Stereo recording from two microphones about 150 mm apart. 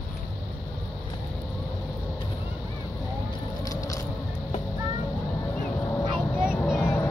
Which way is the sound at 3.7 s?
25° left (ahead or behind).